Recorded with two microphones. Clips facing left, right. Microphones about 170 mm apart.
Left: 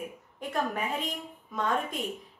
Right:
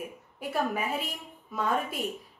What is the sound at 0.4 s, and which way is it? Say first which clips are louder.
A woman's voice: right 1 dB; 5° right (ahead or behind).